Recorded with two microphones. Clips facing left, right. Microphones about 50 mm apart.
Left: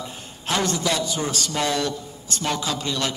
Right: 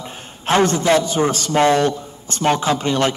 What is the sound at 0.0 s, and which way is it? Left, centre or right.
A man's voice, right.